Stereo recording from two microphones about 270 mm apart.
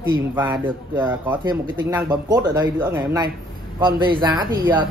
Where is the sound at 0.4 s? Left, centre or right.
Centre.